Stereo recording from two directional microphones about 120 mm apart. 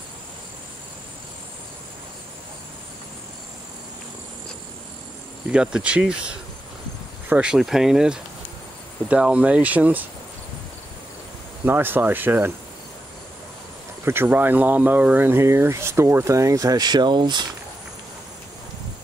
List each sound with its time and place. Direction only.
5.5 s speech: 10° right (ahead or behind)
7.2 s speech: 10° right (ahead or behind)
11.6 s speech: 15° right (ahead or behind)
14.0 s speech: 15° right (ahead or behind); by 17.5 s 40° right (ahead or behind)